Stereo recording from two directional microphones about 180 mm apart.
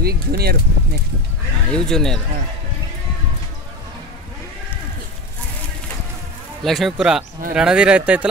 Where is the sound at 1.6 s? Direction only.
5° left (ahead or behind).